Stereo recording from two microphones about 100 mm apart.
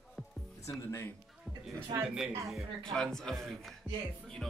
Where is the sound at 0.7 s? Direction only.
30° left (ahead or behind).